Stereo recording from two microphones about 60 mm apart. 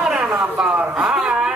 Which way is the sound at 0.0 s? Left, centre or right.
Centre.